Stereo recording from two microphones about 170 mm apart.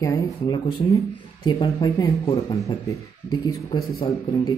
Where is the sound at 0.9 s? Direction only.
20° left (ahead or behind).